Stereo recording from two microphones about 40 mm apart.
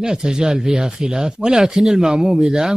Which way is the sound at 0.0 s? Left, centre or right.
Centre.